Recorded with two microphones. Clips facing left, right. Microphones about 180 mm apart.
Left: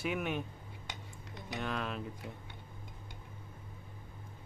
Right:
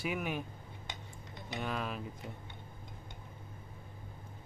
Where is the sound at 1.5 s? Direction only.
5° right (ahead or behind).